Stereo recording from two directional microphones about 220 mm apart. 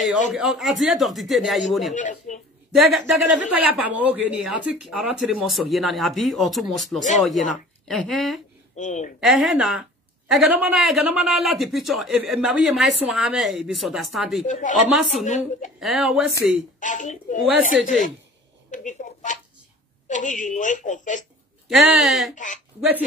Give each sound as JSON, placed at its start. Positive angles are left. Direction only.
{"t": 0.3, "sound": "a man's voice", "side_deg": 0}
{"t": 2.0, "sound": "a woman's voice", "side_deg": 35}
{"t": 2.7, "sound": "a man's voice", "side_deg": 0}
{"t": 8.7, "sound": "a woman's voice", "side_deg": 35}
{"t": 9.2, "sound": "a man's voice", "side_deg": 0}
{"t": 14.4, "sound": "a woman's voice", "side_deg": 35}
{"t": 14.9, "sound": "a man's voice", "side_deg": 0}
{"t": 15.2, "sound": "a woman's voice", "side_deg": 35}
{"t": 15.8, "sound": "a man's voice", "side_deg": 0}
{"t": 16.8, "sound": "a woman's voice", "side_deg": 35}
{"t": 21.6, "sound": "a man's voice", "side_deg": 0}
{"t": 22.3, "sound": "a woman's voice", "side_deg": 35}